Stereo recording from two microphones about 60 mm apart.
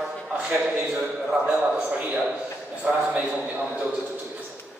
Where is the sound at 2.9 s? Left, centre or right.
Centre.